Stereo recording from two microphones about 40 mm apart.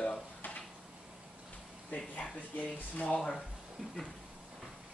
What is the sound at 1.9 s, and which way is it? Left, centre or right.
Speech, left.